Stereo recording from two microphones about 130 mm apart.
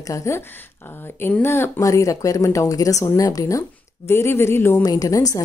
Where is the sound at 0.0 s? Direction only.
25° left (ahead or behind).